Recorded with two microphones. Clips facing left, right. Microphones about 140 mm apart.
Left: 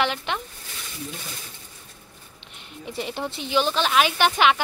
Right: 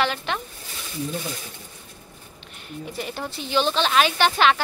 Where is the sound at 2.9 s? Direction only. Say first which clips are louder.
Left 3 dB; 25° left (ahead or behind).